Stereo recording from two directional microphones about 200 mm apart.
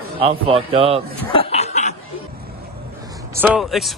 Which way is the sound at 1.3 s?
30° left (ahead or behind).